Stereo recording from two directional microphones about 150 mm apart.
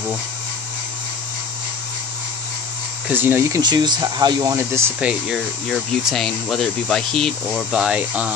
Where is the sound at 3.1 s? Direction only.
15° right (ahead or behind).